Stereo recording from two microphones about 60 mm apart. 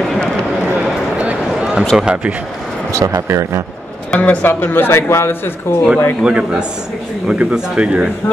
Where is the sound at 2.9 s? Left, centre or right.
Right.